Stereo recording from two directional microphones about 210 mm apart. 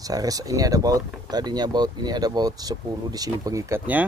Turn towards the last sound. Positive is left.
turn(degrees=-10)  # may be behind; listen again after turning